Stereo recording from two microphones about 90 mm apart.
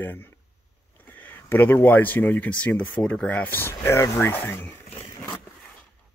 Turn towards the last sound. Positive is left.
turn(degrees=25)  # may be behind; listen again after turning